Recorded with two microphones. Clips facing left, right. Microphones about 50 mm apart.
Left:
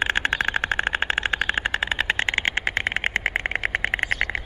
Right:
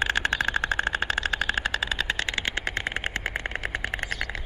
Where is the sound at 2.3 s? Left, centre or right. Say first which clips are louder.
Left 5 dB; left.